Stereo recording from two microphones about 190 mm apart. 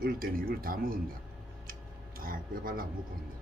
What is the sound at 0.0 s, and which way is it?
Speech, 50° right (ahead or behind).